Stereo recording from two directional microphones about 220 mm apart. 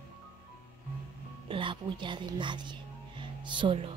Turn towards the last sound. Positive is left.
turn(degrees=-25)  # may be behind; listen again after turning